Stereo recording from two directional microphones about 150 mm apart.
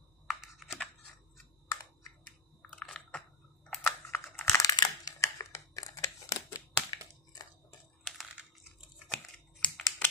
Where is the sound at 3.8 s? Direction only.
20° left (ahead or behind).